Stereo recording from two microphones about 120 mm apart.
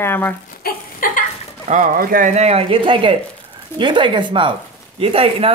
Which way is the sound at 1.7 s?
90° right.